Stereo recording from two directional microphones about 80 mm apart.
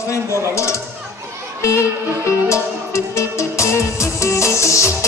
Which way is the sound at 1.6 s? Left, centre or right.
Left.